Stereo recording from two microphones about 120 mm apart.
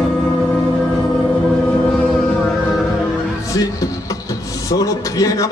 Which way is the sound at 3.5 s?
30° left (ahead or behind).